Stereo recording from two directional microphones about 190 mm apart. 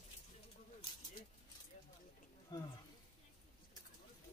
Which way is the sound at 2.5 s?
20° left (ahead or behind).